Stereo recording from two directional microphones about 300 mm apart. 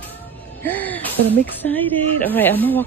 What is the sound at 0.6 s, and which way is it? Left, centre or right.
Music, centre.